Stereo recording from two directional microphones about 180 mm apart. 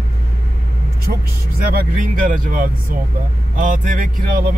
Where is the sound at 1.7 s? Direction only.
45° right (ahead or behind).